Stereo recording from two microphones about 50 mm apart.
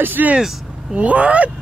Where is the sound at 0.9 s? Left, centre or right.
Right.